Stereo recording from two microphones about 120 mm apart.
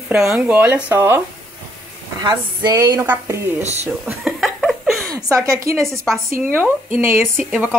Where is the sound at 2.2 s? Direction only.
35° right (ahead or behind).